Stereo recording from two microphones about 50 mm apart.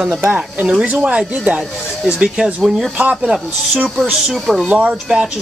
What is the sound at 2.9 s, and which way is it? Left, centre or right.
Cutlery, right.